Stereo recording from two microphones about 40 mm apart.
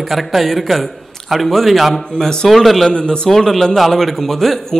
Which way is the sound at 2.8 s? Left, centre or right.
Left.